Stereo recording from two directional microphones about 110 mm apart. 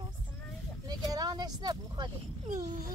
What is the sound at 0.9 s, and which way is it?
Speech, 35° right (ahead or behind).